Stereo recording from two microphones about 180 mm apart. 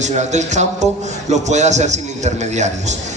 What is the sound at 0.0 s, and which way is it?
A man's voice, 40° right (ahead or behind).